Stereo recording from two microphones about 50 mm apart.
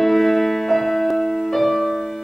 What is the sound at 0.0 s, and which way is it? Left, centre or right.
Music, centre.